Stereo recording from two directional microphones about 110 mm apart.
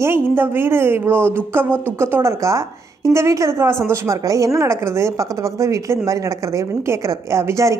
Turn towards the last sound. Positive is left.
turn(degrees=-30)  # may be behind; listen again after turning